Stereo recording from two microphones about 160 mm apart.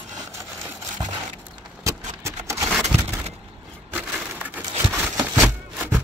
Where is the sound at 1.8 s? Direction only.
20° right (ahead or behind).